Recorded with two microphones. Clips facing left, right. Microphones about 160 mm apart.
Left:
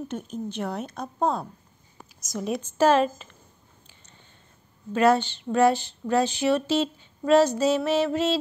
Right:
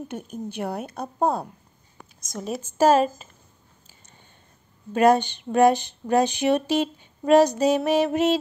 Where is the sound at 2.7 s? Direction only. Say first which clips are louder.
Right 2 dB; 40° right (ahead or behind).